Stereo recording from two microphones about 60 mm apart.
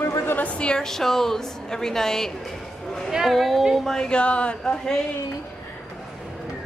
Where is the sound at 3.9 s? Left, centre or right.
Centre.